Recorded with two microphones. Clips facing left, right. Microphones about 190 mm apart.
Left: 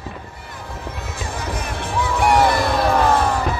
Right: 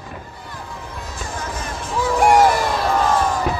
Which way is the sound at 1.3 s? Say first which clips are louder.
Left 1 dB; 60° left (ahead or behind).